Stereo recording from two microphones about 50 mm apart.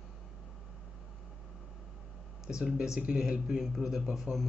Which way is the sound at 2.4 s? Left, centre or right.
Centre.